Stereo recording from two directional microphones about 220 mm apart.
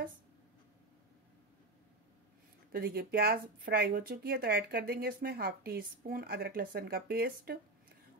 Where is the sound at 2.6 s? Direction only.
45° right (ahead or behind).